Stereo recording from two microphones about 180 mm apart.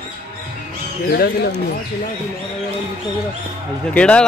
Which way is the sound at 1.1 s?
65° left (ahead or behind).